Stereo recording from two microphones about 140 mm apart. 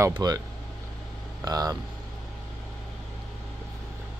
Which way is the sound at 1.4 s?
25° right (ahead or behind).